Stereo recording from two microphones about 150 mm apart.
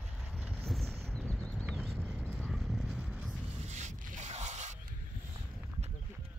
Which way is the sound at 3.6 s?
50° right (ahead or behind).